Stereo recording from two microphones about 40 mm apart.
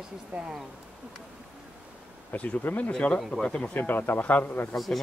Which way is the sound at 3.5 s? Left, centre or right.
Left.